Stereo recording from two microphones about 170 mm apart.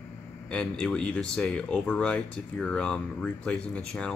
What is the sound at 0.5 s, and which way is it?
A man's voice, 5° left (ahead or behind).